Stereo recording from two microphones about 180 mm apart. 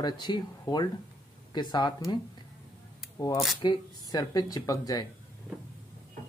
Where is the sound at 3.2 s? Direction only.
20° left (ahead or behind).